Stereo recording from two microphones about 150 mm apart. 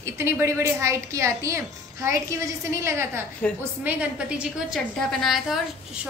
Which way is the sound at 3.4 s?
10° left (ahead or behind).